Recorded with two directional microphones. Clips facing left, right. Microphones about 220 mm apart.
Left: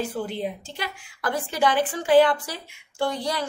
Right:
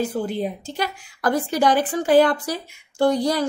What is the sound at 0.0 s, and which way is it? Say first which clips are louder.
A woman's voice: right 4 dB; 40° right (ahead or behind).